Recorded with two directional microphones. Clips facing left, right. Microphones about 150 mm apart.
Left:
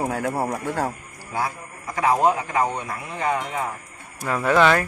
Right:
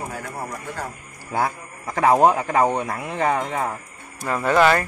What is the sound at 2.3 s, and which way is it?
Speech, 55° right (ahead or behind).